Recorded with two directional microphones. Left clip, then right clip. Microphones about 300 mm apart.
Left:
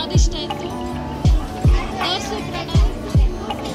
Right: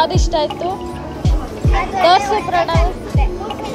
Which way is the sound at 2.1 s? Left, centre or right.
Centre.